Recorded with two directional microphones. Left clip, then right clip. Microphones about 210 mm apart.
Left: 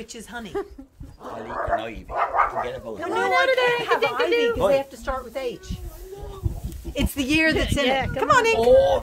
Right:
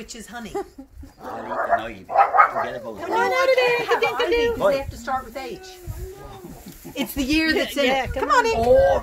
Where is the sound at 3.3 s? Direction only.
10° right (ahead or behind).